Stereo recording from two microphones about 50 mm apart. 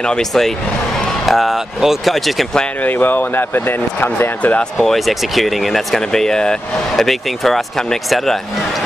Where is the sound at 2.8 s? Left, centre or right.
Left.